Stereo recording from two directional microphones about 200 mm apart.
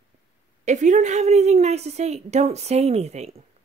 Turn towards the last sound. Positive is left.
turn(degrees=-30)  # may be behind; listen again after turning